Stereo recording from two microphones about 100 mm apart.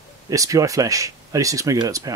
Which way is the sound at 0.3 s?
35° right (ahead or behind).